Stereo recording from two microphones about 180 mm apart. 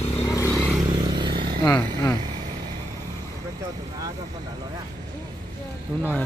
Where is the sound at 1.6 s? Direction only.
15° left (ahead or behind).